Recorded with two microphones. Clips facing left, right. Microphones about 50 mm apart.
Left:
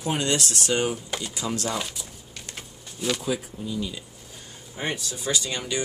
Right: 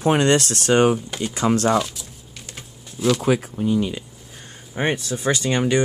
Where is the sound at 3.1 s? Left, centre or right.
Right.